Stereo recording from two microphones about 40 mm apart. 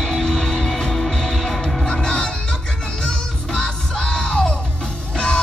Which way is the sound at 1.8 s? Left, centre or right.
Left.